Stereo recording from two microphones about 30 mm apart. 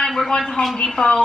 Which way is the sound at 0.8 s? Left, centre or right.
Left.